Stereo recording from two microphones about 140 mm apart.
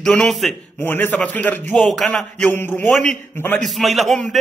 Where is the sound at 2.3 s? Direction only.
15° left (ahead or behind).